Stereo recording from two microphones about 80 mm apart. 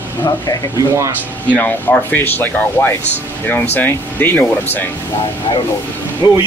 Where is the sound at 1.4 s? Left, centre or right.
Centre.